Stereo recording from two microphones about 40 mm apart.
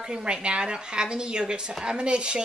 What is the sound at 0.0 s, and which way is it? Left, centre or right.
A woman's voice, right.